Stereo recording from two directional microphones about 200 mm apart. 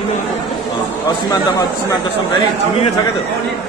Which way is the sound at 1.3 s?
20° left (ahead or behind).